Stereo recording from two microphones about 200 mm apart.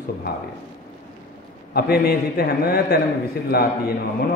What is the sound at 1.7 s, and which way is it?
A man's voice, 50° left (ahead or behind).